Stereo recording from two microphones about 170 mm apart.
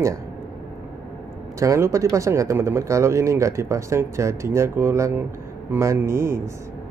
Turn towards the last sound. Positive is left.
turn(degrees=-15)  # may be behind; listen again after turning